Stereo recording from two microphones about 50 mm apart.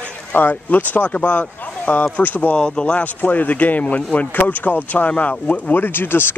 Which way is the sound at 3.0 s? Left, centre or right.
Left.